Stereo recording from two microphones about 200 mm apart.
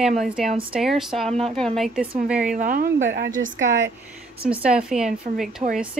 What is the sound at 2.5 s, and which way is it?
Speech, 45° right (ahead or behind).